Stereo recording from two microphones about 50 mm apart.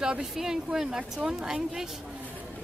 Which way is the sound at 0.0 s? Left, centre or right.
Centre.